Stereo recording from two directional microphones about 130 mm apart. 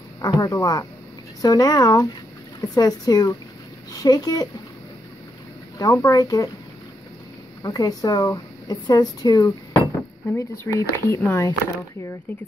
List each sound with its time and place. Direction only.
0.2 s speech: 30° left (ahead or behind)
5.8 s speech: 25° left (ahead or behind)
7.6 s speech: 30° left (ahead or behind)